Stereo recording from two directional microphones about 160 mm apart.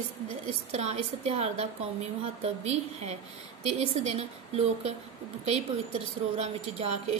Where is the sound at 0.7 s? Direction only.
40° right (ahead or behind).